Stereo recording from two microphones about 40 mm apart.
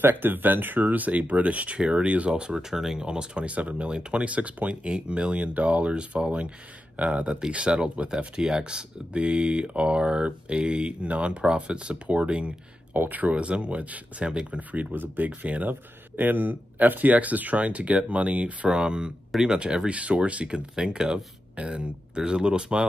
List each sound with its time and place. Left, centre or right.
0.0 s speech: right
2.7 s speech: centre
3.0 s speech: right
4.8 s speech: right
12.9 s speech: right
15.0 s speech: right
15.4 s speech: right
15.7 s speech: right
18.7 s speech: right
19.9 s speech: right